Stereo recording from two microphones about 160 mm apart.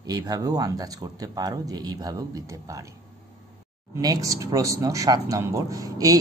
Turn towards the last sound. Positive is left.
turn(degrees=-20)  # may be behind; listen again after turning